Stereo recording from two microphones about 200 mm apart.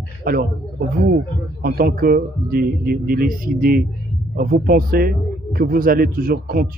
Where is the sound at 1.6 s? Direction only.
45° right (ahead or behind).